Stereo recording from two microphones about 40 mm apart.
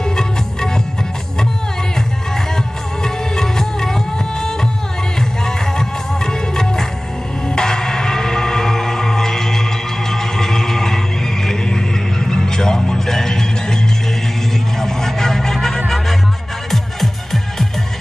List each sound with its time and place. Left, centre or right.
0.1 s music: centre
3.0 s music: centre
14.8 s vehicle: centre
16.7 s music: centre